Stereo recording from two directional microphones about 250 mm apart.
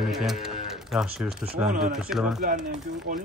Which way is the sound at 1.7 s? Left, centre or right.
Right.